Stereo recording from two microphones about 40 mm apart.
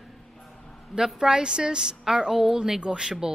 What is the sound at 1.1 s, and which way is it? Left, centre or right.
A woman's voice, centre.